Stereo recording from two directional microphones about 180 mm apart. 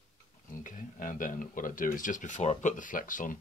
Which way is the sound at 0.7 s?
50° left (ahead or behind).